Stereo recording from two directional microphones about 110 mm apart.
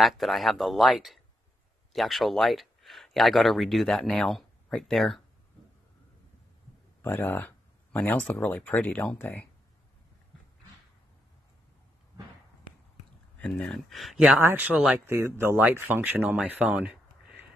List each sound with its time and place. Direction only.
0.0 s speech: centre (ahead or behind)
7.0 s speech: 20° left (ahead or behind)
13.4 s speech: 10° left (ahead or behind)
14.4 s speech: 15° right (ahead or behind)